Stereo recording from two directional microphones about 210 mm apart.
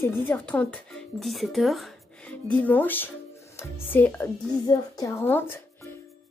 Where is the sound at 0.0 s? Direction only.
10° left (ahead or behind).